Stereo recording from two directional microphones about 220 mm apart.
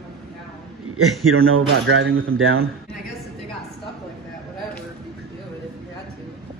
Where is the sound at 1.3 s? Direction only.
65° right (ahead or behind).